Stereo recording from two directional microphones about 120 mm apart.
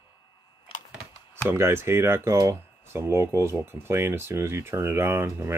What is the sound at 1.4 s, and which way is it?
Speech, 20° right (ahead or behind).